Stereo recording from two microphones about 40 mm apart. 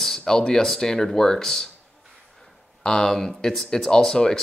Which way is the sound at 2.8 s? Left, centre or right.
Centre.